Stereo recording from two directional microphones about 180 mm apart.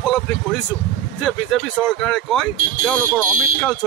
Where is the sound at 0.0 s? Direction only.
Centre (ahead or behind).